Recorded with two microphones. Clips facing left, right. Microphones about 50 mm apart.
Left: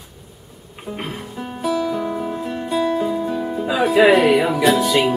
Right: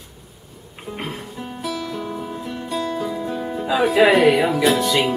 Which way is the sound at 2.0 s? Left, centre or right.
Centre.